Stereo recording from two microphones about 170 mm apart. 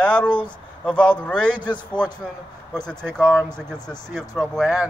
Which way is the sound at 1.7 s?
25° left (ahead or behind).